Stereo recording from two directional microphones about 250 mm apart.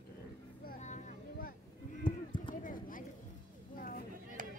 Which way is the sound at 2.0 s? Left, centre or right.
Left.